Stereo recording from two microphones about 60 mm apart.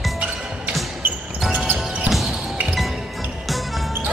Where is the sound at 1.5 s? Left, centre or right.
Right.